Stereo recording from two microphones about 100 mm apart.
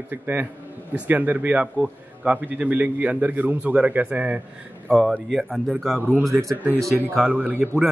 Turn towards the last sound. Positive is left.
turn(degrees=-15)  # may be behind; listen again after turning